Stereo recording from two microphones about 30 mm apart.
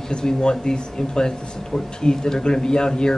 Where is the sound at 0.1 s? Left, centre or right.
Left.